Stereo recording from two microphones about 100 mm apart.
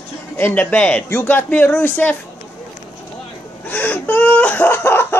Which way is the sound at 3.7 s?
15° left (ahead or behind).